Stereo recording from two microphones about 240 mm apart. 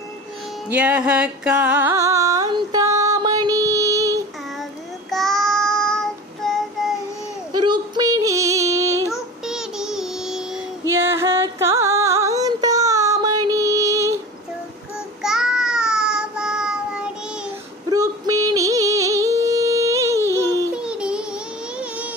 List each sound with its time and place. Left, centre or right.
0.7 s music: centre
5.1 s child singing: centre
7.5 s female singing: centre
9.1 s child singing: centre
15.2 s child singing: centre
17.8 s a sound: centre
18.5 s music: centre